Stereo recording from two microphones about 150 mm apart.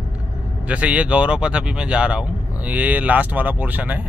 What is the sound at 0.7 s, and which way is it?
Speech, 10° right (ahead or behind).